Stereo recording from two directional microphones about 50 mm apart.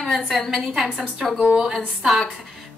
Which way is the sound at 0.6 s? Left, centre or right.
Centre.